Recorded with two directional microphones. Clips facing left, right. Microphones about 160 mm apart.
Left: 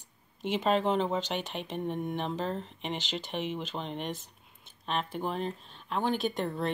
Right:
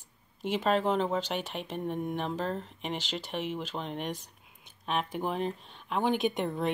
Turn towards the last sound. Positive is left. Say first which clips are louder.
# right 2 dB
turn(degrees=-15)  # may be behind; listen again after turning